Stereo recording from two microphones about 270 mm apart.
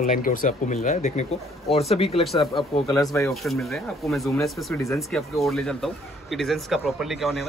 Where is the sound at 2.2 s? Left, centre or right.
Centre.